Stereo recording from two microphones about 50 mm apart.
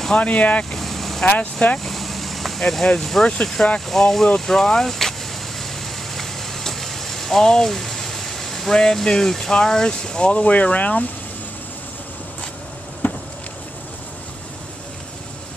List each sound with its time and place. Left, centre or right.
0.1 s speech: left
0.7 s vehicle: centre
1.2 s speech: left
1.9 s vehicle: centre
3.0 s speech: centre
3.6 s speech: centre
6.1 s speech: centre; by 11.1 s left
13.0 s a sound: left